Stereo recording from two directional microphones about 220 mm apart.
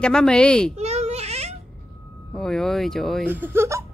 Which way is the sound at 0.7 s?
30° right (ahead or behind).